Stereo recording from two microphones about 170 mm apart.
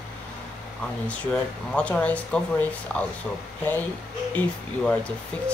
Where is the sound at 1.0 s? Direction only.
5° left (ahead or behind).